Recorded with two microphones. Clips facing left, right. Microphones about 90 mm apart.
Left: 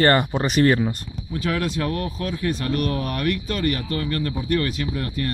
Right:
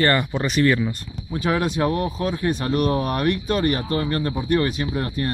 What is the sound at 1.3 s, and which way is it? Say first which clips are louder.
Speech: right 3 dB; 20° right (ahead or behind).